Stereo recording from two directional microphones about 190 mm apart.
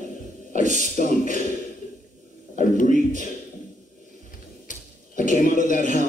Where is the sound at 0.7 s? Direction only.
45° left (ahead or behind).